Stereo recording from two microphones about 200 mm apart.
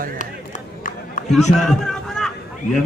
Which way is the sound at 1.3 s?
Centre (ahead or behind).